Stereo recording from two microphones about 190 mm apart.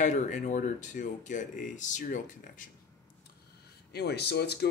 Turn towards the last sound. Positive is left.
turn(degrees=60)  # may be behind; listen again after turning